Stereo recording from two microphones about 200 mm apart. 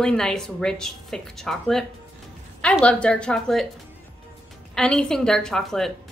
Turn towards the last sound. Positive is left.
turn(degrees=0)  # may be behind; listen again after turning